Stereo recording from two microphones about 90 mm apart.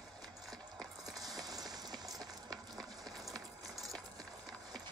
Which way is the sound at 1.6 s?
50° right (ahead or behind).